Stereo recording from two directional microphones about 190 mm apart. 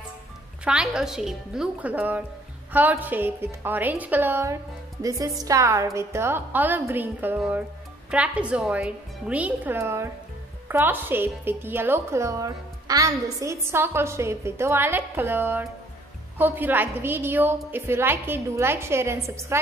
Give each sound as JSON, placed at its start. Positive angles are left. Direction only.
{"t": 0.7, "sound": "speech", "side_deg": -5}